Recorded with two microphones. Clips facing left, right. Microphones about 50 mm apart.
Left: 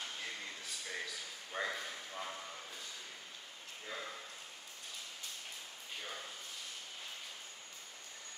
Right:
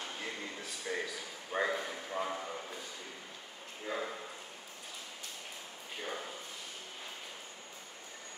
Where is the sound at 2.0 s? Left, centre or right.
Right.